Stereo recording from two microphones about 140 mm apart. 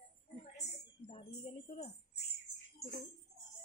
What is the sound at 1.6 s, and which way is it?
Jingle bell, 50° left (ahead or behind).